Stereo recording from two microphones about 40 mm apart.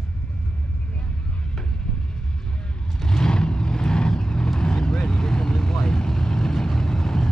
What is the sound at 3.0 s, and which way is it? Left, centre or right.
Vehicle, centre.